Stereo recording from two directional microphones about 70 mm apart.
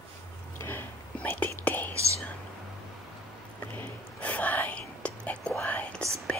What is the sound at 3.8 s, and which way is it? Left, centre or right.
Whispering, left.